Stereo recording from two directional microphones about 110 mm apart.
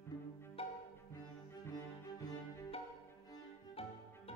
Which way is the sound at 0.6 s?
60° left (ahead or behind).